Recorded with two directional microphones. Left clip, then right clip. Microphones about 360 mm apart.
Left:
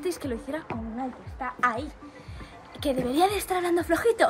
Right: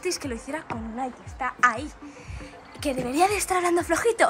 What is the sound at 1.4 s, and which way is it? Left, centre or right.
Speech, centre.